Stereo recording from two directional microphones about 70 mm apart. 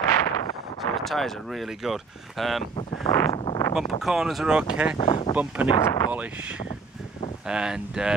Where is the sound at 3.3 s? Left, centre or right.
Left.